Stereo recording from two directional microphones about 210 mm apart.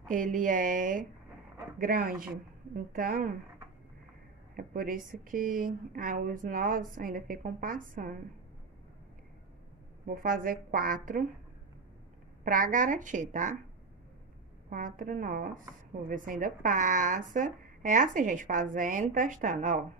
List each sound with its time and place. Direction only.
0.1 s speech: 40° right (ahead or behind)
4.6 s speech: 40° right (ahead or behind)
10.0 s speech: 40° right (ahead or behind)
12.4 s speech: 40° right (ahead or behind)
14.7 s speech: 40° right (ahead or behind)